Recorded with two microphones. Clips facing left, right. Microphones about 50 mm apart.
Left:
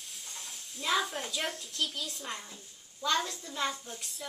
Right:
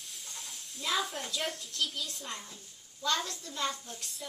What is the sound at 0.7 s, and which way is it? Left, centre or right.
Speech, centre.